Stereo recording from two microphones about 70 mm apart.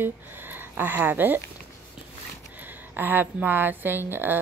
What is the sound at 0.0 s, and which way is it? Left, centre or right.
Speech, right.